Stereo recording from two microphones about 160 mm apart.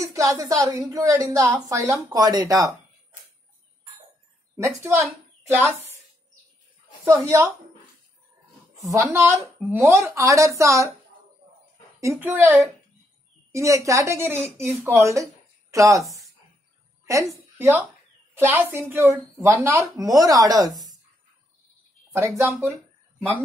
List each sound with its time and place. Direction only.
0.0 s a woman's voice: 20° right (ahead or behind)
4.6 s speech: 15° right (ahead or behind)
7.1 s a woman's voice: 15° right (ahead or behind)
8.8 s a woman's voice: 15° right (ahead or behind)
12.2 s a woman's voice: 10° right (ahead or behind)
22.1 s speech: 15° right (ahead or behind)